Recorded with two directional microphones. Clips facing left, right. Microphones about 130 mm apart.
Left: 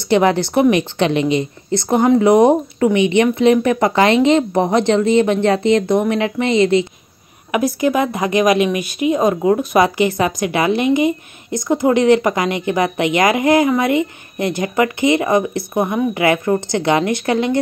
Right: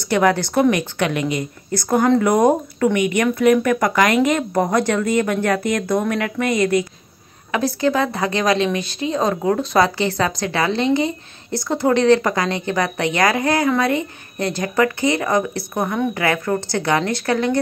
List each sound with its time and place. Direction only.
0.0 s a woman's voice: 20° left (ahead or behind)